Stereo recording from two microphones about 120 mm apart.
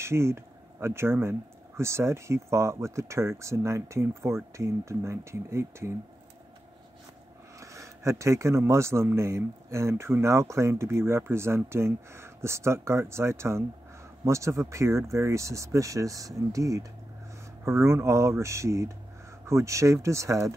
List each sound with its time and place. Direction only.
0.0 s speech: 20° right (ahead or behind)
7.6 s speech: 25° right (ahead or behind)